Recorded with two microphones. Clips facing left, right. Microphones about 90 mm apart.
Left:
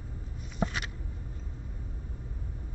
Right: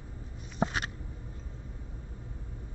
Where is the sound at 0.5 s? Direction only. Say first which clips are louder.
Right 2 dB; 35° right (ahead or behind).